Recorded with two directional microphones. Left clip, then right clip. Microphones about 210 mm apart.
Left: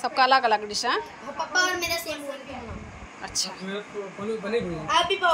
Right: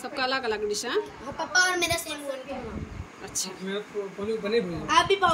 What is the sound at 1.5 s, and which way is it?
Speech, 15° right (ahead or behind).